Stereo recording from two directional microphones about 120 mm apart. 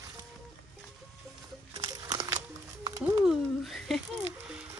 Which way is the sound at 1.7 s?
35° right (ahead or behind).